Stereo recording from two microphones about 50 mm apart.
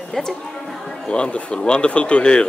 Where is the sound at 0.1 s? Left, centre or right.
Centre.